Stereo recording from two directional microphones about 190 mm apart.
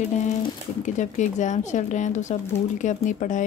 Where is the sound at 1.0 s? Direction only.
40° left (ahead or behind).